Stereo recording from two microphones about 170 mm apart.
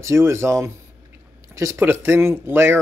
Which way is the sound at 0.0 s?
15° right (ahead or behind).